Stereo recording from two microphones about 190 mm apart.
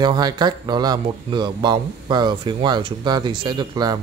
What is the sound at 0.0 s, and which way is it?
Speech, 20° right (ahead or behind).